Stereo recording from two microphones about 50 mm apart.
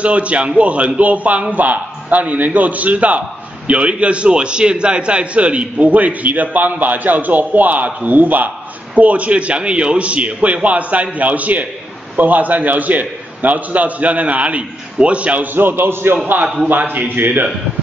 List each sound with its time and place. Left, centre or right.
0.0 s a man's voice: right
15.5 s a man's voice: right